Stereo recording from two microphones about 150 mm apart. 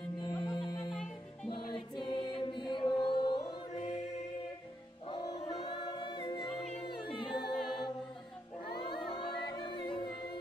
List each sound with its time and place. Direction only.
0.2 s music: 30° left (ahead or behind)
5.1 s choir: 25° left (ahead or behind)
6.9 s a capella: 30° left (ahead or behind)
8.8 s music: 35° left (ahead or behind)